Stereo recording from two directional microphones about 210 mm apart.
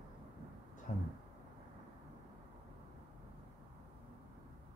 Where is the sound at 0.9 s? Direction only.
35° left (ahead or behind).